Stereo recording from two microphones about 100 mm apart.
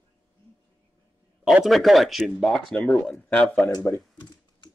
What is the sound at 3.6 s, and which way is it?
Computer keyboard, 40° left (ahead or behind).